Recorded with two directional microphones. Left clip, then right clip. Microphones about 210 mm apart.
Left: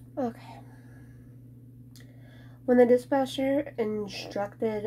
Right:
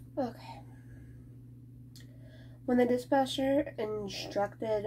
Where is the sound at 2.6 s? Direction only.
30° left (ahead or behind).